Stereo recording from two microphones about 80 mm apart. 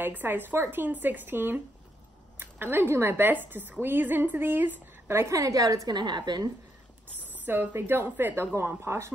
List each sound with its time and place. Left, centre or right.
0.0 s a woman's voice: right
5.9 s a woman's voice: right
7.4 s a woman's voice: right